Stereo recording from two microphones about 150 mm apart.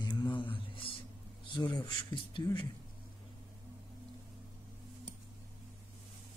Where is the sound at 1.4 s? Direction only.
30° left (ahead or behind).